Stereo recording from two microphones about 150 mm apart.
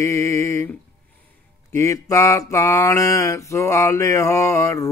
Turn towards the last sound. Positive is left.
turn(degrees=20)  # may be behind; listen again after turning